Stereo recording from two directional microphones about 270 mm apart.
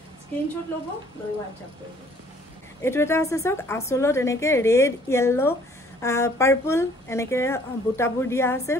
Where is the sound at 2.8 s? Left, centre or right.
Centre.